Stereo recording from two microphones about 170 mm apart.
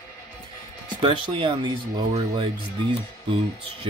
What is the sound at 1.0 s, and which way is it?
Speech, 30° right (ahead or behind).